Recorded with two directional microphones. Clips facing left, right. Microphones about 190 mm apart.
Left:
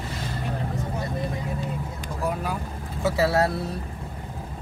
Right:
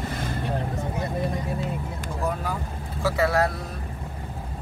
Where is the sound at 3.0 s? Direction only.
25° left (ahead or behind).